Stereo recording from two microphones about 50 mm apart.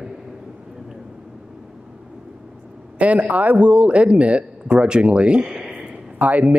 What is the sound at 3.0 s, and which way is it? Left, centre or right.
A man's voice, right.